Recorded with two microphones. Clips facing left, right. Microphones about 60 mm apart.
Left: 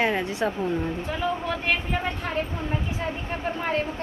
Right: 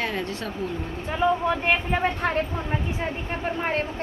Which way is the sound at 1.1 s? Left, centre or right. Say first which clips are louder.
Right 8 dB; right.